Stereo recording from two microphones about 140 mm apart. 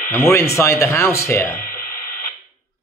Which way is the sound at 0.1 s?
20° left (ahead or behind).